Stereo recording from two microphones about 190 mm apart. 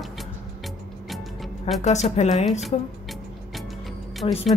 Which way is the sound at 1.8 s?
35° left (ahead or behind).